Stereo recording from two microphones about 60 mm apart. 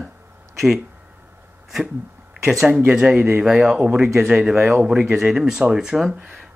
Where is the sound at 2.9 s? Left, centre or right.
Centre.